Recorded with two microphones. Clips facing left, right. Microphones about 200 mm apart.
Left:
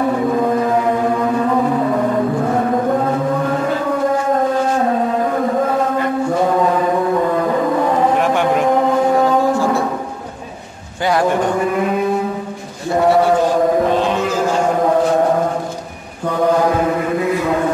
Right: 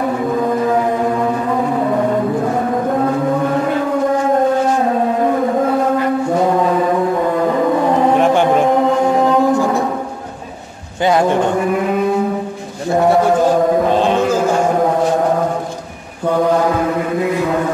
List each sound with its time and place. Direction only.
9.5 s music: 15° right (ahead or behind)